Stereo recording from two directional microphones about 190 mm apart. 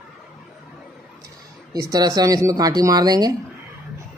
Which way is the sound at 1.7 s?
20° right (ahead or behind).